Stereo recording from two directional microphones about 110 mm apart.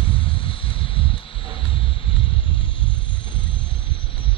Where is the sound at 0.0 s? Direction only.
50° left (ahead or behind).